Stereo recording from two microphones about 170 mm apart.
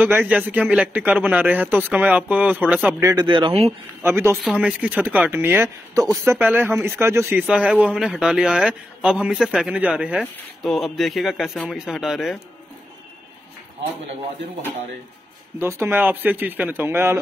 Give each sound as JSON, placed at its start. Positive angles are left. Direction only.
{"t": 0.3, "sound": "speech", "side_deg": -10}
{"t": 4.0, "sound": "speech", "side_deg": -15}
{"t": 4.4, "sound": "a man's voice", "side_deg": -5}
{"t": 15.6, "sound": "speech", "side_deg": -15}